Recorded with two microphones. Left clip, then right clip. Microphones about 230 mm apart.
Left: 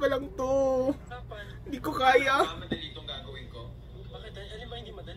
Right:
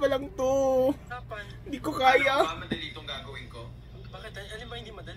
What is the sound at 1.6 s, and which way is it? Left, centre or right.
Speech, centre.